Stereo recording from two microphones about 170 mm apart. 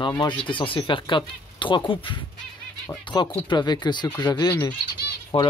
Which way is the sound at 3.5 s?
25° left (ahead or behind).